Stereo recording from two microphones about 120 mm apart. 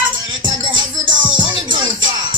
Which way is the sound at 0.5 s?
40° right (ahead or behind).